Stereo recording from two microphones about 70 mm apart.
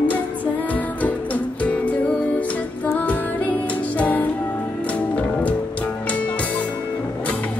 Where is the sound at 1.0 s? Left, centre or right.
Left.